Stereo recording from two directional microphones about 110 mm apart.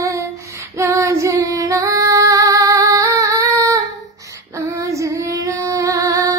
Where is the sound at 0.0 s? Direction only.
25° right (ahead or behind).